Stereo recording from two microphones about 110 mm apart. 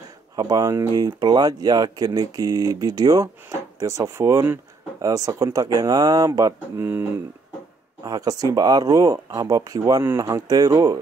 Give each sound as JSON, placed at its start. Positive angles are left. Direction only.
{"t": 0.4, "sound": "speech", "side_deg": -35}
{"t": 6.8, "sound": "speech", "side_deg": -20}
{"t": 8.0, "sound": "speech", "side_deg": -35}